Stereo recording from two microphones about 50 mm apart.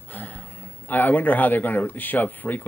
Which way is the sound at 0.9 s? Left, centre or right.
Left.